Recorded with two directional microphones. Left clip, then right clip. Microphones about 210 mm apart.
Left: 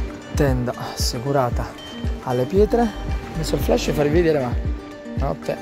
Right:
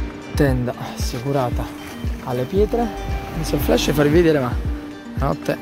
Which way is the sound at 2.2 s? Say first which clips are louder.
Left 2 dB; 40° left (ahead or behind).